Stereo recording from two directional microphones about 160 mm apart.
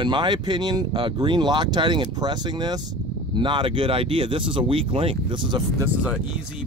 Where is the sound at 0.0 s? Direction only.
30° right (ahead or behind).